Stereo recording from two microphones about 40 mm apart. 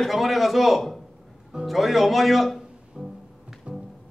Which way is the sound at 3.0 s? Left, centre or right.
Centre.